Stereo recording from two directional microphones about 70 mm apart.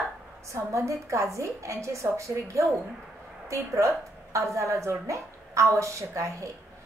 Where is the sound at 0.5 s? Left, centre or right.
Right.